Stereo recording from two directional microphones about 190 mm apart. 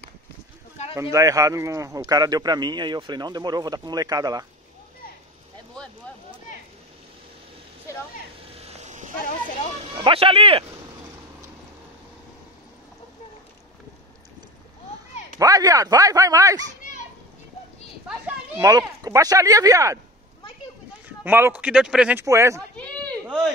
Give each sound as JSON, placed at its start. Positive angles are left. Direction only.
{"t": 1.1, "sound": "a man's voice", "side_deg": -15}
{"t": 8.5, "sound": "a sound", "side_deg": -35}
{"t": 9.9, "sound": "a man's voice", "side_deg": -25}
{"t": 15.3, "sound": "speech", "side_deg": -20}
{"t": 18.6, "sound": "speech", "side_deg": -20}
{"t": 21.2, "sound": "speech", "side_deg": -10}
{"t": 22.2, "sound": "speech", "side_deg": -15}